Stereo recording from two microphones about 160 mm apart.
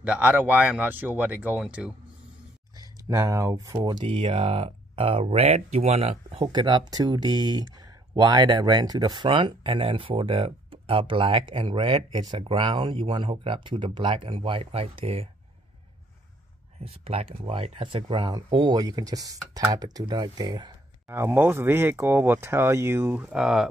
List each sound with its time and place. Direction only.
0.0 s speech: 10° right (ahead or behind)
2.8 s speech: 20° right (ahead or behind)
3.8 s speech: 30° right (ahead or behind)
16.8 s speech: 35° right (ahead or behind)
21.1 s speech: 15° right (ahead or behind)